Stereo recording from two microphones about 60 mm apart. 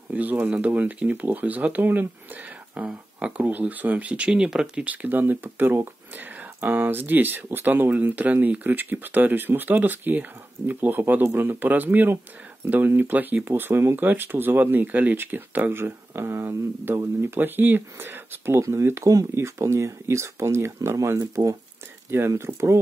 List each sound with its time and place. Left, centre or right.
0.1 s speech: right
3.4 s speech: right
4.8 s speech: right
22.3 s speech: right